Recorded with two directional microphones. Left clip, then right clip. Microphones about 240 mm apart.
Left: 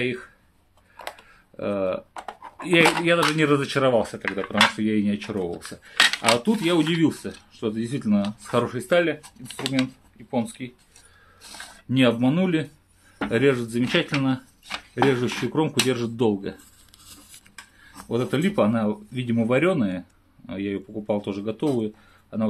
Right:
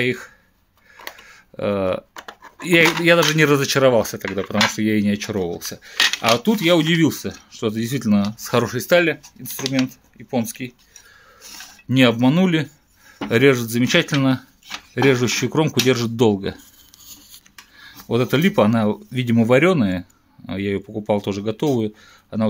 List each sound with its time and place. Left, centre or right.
0.0 s speech: right
1.2 s a sound: right
2.6 s speech: right
11.9 s speech: right
17.0 s cutlery: centre
18.0 s speech: right